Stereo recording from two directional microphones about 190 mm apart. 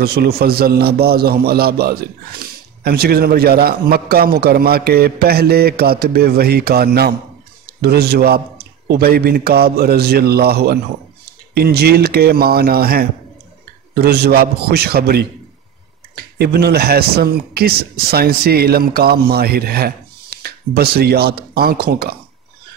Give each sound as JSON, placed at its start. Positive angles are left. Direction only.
{"t": 0.0, "sound": "a man's voice", "side_deg": -55}